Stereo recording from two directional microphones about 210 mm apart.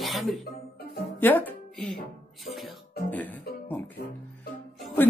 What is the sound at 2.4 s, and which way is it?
Music, centre (ahead or behind).